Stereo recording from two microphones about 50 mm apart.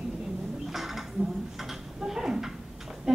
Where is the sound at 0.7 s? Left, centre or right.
Centre.